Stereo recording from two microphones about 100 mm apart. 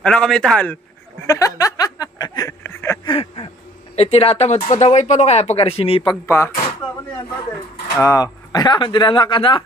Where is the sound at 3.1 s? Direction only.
70° left (ahead or behind).